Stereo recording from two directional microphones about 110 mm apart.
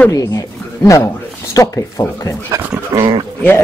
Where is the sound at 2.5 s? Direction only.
30° right (ahead or behind).